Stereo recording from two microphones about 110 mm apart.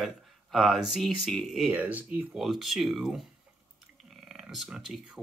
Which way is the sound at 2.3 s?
Centre (ahead or behind).